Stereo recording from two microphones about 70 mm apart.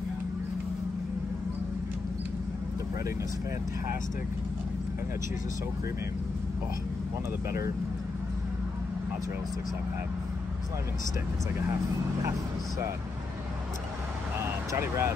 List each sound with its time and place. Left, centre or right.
14.4 s vehicle: right